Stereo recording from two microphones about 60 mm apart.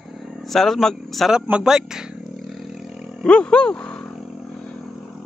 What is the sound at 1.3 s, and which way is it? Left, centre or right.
Speech, centre.